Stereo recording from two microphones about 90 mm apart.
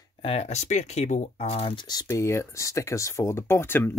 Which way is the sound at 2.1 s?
30° left (ahead or behind).